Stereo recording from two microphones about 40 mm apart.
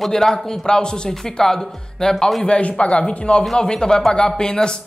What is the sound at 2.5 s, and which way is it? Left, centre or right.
A man's voice, left.